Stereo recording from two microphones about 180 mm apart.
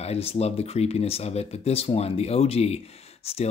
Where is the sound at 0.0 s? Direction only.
35° left (ahead or behind).